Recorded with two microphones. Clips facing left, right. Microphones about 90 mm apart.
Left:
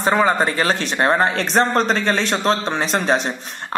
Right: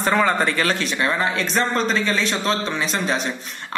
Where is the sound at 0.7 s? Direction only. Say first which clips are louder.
Left 5 dB; 45° left (ahead or behind).